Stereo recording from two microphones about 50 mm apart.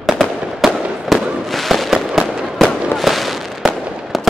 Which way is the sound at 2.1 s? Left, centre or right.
Centre.